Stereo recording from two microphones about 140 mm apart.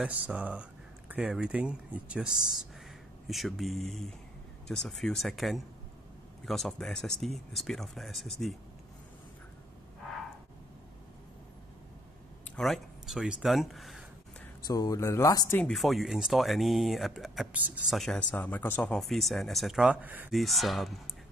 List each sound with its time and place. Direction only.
0.0 s speech: 10° right (ahead or behind)
12.5 s speech: centre (ahead or behind)
14.7 s speech: 25° left (ahead or behind)
15.6 s speech: centre (ahead or behind)
17.9 s speech: centre (ahead or behind)
18.3 s speech: 15° left (ahead or behind); by 20.3 s 10° right (ahead or behind)
20.3 s speech: centre (ahead or behind)